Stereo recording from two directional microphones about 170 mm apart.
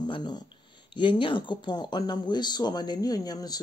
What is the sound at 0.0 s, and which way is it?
Speech, 25° left (ahead or behind).